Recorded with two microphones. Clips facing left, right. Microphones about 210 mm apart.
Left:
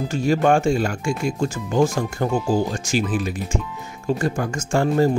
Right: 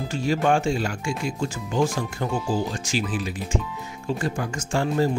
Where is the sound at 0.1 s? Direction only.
50° left (ahead or behind).